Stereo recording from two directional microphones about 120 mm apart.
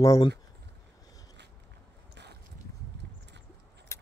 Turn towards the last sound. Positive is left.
turn(degrees=20)  # may be behind; listen again after turning